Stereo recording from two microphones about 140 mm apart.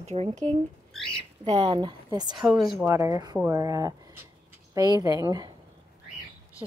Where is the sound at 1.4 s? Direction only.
45° right (ahead or behind); by 5.5 s 25° right (ahead or behind).